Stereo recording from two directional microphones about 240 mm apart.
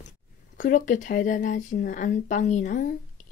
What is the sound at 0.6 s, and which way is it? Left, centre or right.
Speech, left.